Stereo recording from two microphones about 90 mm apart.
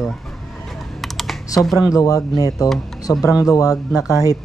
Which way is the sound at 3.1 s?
30° left (ahead or behind).